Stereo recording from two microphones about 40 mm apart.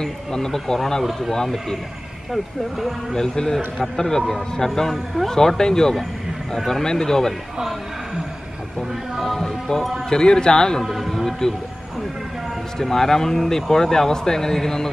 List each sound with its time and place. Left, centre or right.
0.0 s speech: centre
2.3 s speech: centre
3.2 s speech: centre
4.9 s speech: centre
5.3 s speech: centre
9.2 s speech: centre
10.8 s speech: centre
12.8 s speech: centre